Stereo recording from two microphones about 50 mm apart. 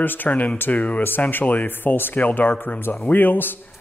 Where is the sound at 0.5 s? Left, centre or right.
Left.